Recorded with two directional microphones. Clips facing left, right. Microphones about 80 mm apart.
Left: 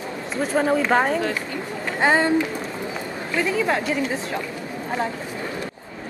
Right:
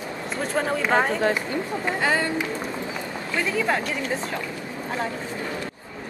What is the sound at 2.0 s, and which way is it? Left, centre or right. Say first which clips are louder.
Speech: left 6 dB; left.